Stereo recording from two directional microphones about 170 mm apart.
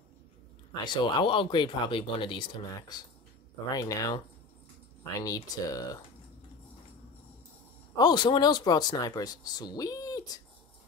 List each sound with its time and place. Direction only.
0.8 s speech: 25° left (ahead or behind)
5.2 s speech: 20° left (ahead or behind)
7.9 s speech: 25° left (ahead or behind)